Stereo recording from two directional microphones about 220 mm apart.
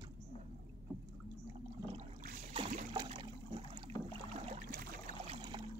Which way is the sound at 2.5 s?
25° right (ahead or behind).